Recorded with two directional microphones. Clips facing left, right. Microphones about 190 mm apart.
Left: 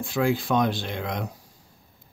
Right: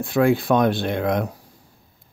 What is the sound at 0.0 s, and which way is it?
Speech, 60° right (ahead or behind).